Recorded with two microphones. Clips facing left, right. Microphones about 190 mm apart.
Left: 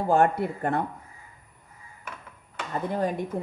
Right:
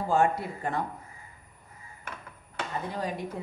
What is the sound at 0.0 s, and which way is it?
Speech, 55° left (ahead or behind).